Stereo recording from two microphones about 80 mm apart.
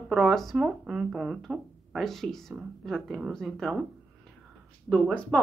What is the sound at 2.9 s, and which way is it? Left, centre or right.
Speech, centre.